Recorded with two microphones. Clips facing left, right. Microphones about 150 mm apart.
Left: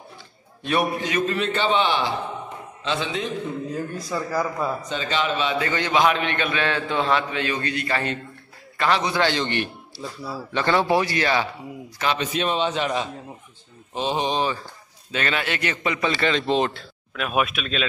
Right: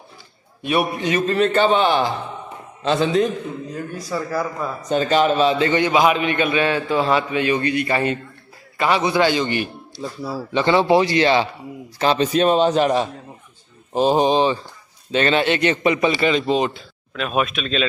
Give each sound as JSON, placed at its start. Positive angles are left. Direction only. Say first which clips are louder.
{"t": 0.6, "sound": "speech", "louder": "right 2 dB", "side_deg": -10}
{"t": 1.2, "sound": "a man's voice", "louder": "right 9 dB", "side_deg": -40}
{"t": 3.7, "sound": "speech", "louder": "right 1 dB", "side_deg": 0}
{"t": 4.8, "sound": "a man's voice", "louder": "right 8 dB", "side_deg": -45}
{"t": 5.8, "sound": "speech", "louder": "right 4 dB", "side_deg": -10}
{"t": 10.5, "sound": "a man's voice", "louder": "right 5 dB", "side_deg": -20}